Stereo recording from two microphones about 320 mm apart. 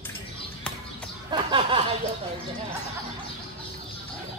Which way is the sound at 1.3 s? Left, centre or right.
Centre.